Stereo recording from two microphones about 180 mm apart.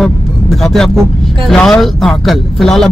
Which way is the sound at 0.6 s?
Centre (ahead or behind).